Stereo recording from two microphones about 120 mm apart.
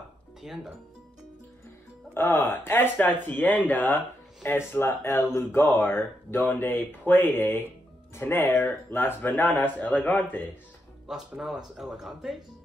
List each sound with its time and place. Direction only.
0.4 s speech: 5° right (ahead or behind)
2.1 s speech: 20° left (ahead or behind)
11.1 s speech: 5° right (ahead or behind)